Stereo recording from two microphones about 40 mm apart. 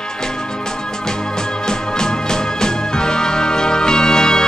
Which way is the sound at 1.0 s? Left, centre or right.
Centre.